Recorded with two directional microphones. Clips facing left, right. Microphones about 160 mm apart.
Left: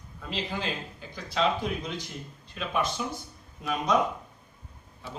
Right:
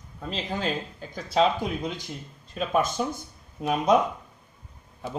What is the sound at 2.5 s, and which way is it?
Speech, 45° right (ahead or behind).